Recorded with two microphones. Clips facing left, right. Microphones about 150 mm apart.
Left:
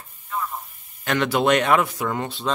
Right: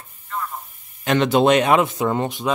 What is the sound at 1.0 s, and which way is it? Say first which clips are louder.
Speech: right 5 dB; 20° right (ahead or behind).